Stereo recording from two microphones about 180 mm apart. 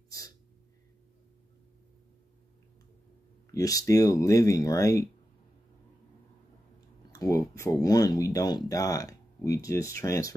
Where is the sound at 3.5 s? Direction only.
20° left (ahead or behind).